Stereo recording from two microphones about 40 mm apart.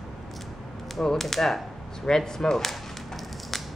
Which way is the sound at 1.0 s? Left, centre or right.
Centre.